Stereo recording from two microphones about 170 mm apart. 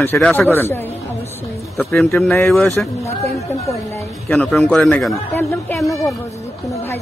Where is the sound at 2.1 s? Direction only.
10° left (ahead or behind).